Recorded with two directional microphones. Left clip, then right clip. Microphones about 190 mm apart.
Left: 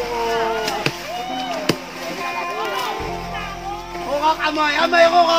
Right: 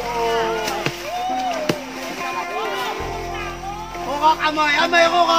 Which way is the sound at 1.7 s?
45° left (ahead or behind).